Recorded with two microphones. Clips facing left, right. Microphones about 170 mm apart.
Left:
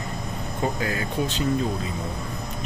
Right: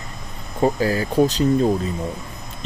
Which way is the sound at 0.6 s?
35° right (ahead or behind).